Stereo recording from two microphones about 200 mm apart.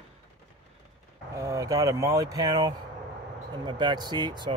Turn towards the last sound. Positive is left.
turn(degrees=-20)  # may be behind; listen again after turning